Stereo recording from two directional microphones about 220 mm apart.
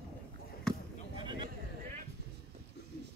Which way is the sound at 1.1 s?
20° right (ahead or behind).